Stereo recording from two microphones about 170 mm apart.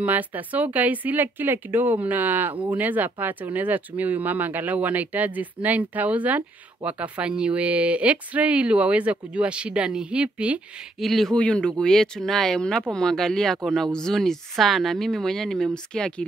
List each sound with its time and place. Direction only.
0.0 s speech: 10° right (ahead or behind)